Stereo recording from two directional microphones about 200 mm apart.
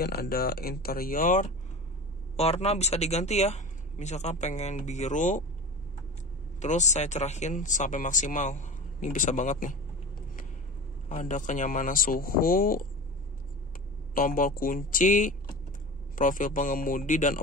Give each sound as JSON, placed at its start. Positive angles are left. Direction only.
{"t": 0.0, "sound": "speech", "side_deg": 50}
{"t": 6.6, "sound": "speech", "side_deg": 35}
{"t": 11.1, "sound": "speech", "side_deg": 40}
{"t": 14.1, "sound": "speech", "side_deg": 45}